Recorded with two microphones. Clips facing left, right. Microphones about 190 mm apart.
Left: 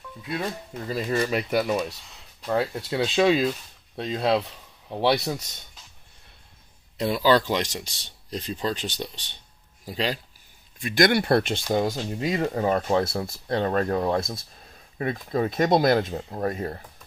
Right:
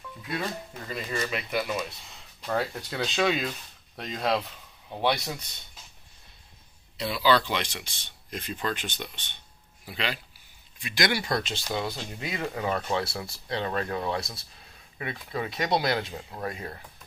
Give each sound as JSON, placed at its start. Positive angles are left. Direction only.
{"t": 0.8, "sound": "speech", "side_deg": 35}
{"t": 2.5, "sound": "speech", "side_deg": 25}
{"t": 7.0, "sound": "speech", "side_deg": 45}
{"t": 10.8, "sound": "speech", "side_deg": 50}